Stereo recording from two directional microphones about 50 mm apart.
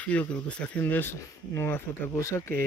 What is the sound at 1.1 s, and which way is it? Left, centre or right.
Speech, left.